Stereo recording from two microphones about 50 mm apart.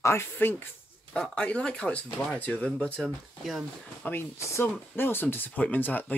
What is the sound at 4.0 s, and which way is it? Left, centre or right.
Speech, left.